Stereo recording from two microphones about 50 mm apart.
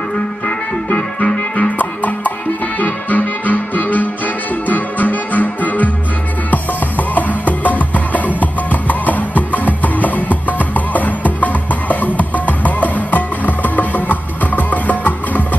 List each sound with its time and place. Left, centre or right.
0.8 s music: left